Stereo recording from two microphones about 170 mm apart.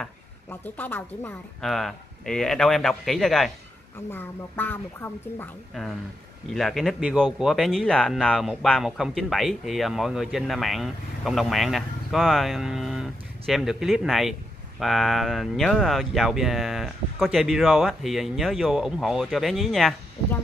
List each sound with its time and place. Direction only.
0.5 s speech: 10° left (ahead or behind)